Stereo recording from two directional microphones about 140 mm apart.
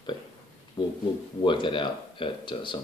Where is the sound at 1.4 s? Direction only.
35° left (ahead or behind).